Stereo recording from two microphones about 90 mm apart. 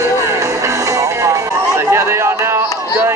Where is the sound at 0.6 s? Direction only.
35° right (ahead or behind).